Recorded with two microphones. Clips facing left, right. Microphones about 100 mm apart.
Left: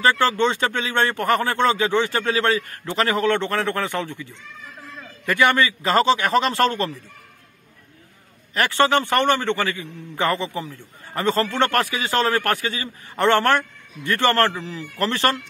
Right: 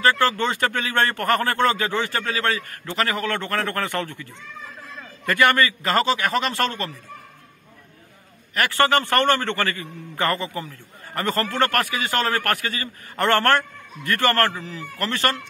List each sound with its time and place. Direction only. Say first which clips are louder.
0.2 s a man's voice: left 2 dB; 20° left (ahead or behind)
8.5 s a man's voice: left 1 dB; 25° left (ahead or behind)